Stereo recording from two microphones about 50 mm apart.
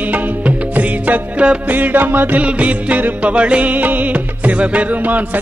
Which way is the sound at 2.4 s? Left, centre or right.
Right.